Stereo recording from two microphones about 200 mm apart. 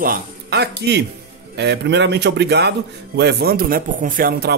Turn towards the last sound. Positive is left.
turn(degrees=-50)  # may be behind; listen again after turning